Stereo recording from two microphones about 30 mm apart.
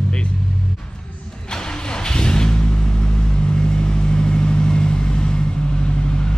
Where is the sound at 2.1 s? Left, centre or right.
Left.